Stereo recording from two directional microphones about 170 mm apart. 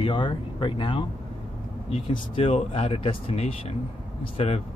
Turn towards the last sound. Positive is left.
turn(degrees=40)  # may be behind; listen again after turning